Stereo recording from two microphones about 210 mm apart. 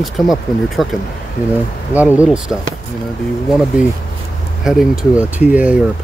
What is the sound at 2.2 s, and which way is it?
Speech, centre (ahead or behind).